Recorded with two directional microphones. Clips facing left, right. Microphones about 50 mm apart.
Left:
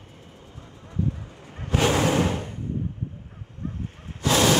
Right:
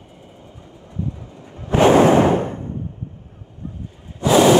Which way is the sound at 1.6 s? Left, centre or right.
Right.